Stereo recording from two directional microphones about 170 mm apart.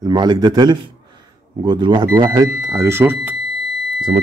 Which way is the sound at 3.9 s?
30° right (ahead or behind).